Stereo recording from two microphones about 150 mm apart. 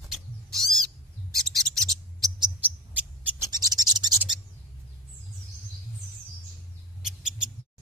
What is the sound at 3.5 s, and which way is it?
Scratch, 25° right (ahead or behind).